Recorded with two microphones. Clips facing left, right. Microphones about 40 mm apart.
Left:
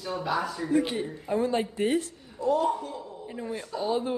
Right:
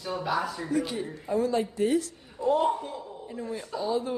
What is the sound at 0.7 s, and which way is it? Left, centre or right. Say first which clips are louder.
Speech: left 4 dB; left.